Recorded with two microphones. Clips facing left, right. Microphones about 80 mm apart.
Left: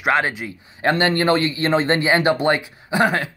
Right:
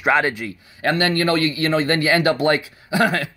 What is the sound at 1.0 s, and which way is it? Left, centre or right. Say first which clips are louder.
Speech: left 1 dB; left.